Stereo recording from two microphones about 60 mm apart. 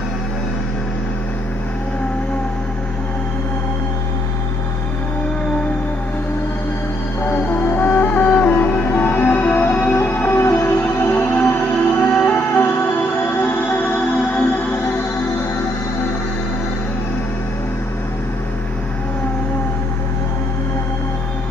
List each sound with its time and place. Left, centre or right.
7.2 s music: left